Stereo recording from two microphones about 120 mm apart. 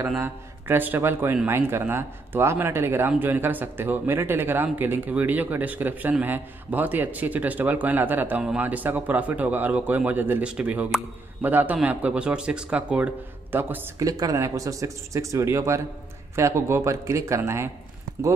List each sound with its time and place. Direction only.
0.2 s a man's voice: 15° right (ahead or behind)
14.0 s a man's voice: 30° right (ahead or behind)